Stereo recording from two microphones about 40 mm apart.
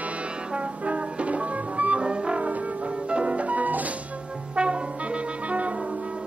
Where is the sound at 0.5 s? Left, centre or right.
Right.